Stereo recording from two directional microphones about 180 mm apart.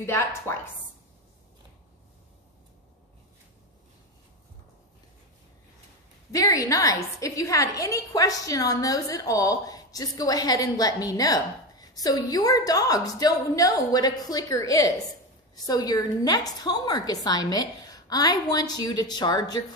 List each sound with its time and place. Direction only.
0.0 s a woman's voice: 15° left (ahead or behind)
6.3 s a woman's voice: 20° left (ahead or behind)